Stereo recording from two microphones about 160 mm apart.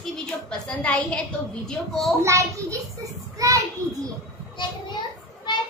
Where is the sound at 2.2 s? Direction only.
20° right (ahead or behind).